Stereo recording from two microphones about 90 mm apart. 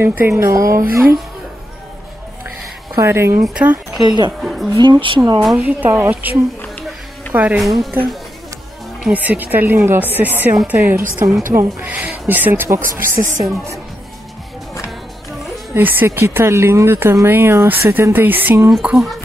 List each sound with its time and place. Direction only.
0.0 s speech: 25° right (ahead or behind)
3.0 s speech: 30° right (ahead or behind)
3.5 s speech: 15° right (ahead or behind)
4.0 s speech: 55° right (ahead or behind)
4.4 s speech: 5° right (ahead or behind)
4.7 s speech: 60° right (ahead or behind)
5.6 s speech: 20° right (ahead or behind)
7.3 s speech: 15° right (ahead or behind)
7.6 s speech: centre (ahead or behind)
9.0 s speech: 15° right (ahead or behind)
15.7 s speech: 20° right (ahead or behind)
18.7 s speech: 5° right (ahead or behind)